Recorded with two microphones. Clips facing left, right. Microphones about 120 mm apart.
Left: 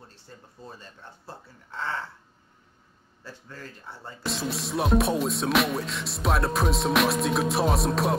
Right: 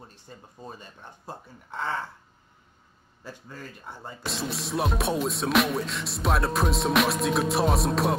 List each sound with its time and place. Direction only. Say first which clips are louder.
0.0 s speech: right 2 dB; 15° right (ahead or behind)
3.3 s speech: right 1 dB; 15° right (ahead or behind)
4.2 s music: left 2 dB; centre (ahead or behind)